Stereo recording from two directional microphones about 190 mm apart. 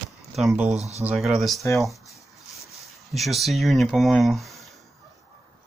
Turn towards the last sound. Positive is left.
turn(degrees=0)  # may be behind; listen again after turning